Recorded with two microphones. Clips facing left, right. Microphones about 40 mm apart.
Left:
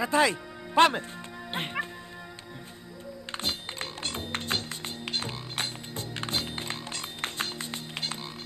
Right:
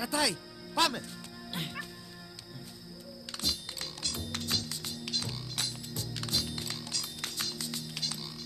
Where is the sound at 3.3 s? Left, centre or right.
Left.